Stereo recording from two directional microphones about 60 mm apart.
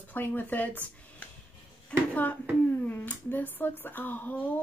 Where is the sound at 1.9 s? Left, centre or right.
Centre.